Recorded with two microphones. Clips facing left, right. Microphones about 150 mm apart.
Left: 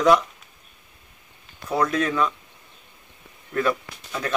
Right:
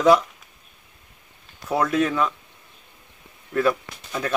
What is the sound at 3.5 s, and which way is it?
Speech, 10° right (ahead or behind).